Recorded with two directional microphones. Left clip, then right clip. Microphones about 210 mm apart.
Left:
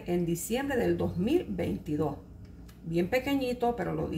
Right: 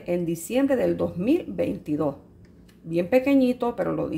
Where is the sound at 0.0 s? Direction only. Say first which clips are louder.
Right 5 dB; 50° right (ahead or behind).